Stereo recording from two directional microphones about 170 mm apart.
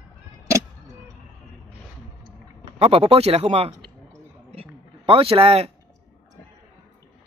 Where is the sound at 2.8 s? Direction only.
35° right (ahead or behind).